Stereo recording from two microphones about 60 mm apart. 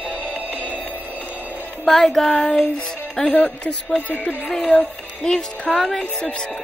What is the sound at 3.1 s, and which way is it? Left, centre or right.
Speech, left.